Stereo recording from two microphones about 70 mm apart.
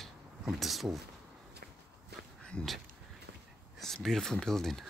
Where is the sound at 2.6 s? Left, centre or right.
Centre.